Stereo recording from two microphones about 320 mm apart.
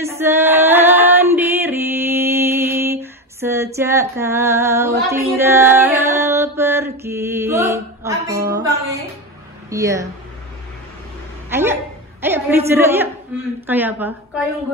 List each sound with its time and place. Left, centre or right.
0.2 s female singing: centre
9.7 s speech: centre
11.5 s a woman's voice: centre